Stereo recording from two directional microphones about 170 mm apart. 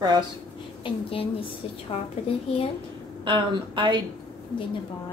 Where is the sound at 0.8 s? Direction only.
30° left (ahead or behind).